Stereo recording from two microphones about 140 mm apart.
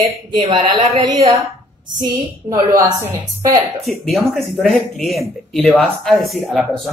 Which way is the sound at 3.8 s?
Centre (ahead or behind).